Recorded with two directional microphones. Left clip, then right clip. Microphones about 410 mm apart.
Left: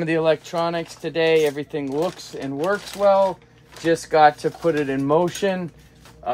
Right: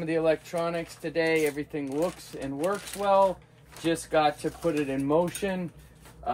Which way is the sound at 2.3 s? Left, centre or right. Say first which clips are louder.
Left 6 dB; left.